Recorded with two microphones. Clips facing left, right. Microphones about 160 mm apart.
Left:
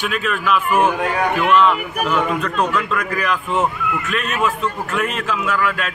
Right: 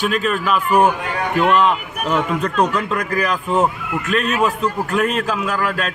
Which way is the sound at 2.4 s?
35° right (ahead or behind).